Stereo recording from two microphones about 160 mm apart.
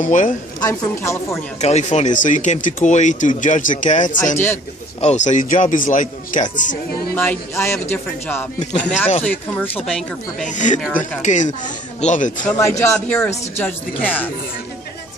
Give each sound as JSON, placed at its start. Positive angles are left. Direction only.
{"t": 0.0, "sound": "speech", "side_deg": 55}
{"t": 0.6, "sound": "a woman's voice", "side_deg": 20}
{"t": 1.6, "sound": "speech", "side_deg": 45}
{"t": 7.2, "sound": "speech", "side_deg": 15}
{"t": 10.4, "sound": "speech", "side_deg": 50}
{"t": 12.5, "sound": "a woman's voice", "side_deg": 20}